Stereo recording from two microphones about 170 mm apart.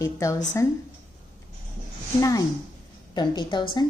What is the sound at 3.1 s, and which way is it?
Speech, 25° left (ahead or behind).